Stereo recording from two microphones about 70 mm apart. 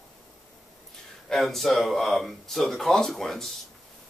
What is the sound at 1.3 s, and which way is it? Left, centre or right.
Speech, centre.